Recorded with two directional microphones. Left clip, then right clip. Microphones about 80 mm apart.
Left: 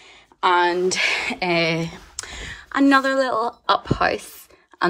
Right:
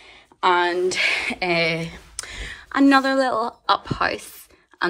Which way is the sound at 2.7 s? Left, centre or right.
Left.